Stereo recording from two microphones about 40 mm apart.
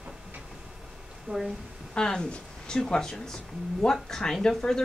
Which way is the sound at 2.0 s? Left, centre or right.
Centre.